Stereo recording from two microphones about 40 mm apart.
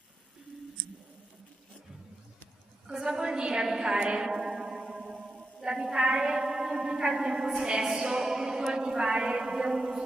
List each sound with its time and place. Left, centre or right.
2.9 s a sound: centre
4.1 s music: centre
5.6 s a woman's voice: centre